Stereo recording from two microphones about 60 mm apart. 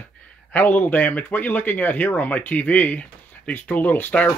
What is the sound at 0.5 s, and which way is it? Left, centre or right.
Speech, left.